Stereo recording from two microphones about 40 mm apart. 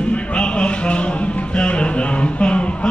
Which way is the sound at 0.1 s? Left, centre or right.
Left.